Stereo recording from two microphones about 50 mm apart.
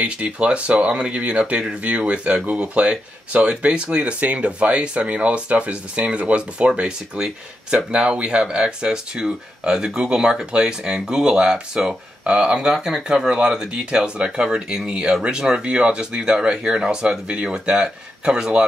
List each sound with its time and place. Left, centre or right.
0.0 s speech: right